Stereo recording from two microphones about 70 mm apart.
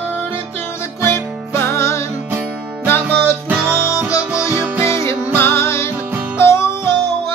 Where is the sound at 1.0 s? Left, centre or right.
Left.